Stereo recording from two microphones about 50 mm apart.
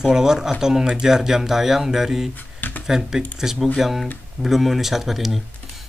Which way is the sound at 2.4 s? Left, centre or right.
Left.